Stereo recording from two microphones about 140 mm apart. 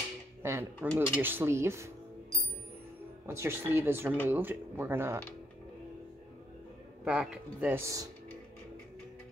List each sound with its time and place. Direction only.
0.4 s speech: 20° right (ahead or behind)
3.3 s speech: 15° right (ahead or behind)
7.1 s speech: 10° right (ahead or behind)
7.8 s speech: 25° right (ahead or behind)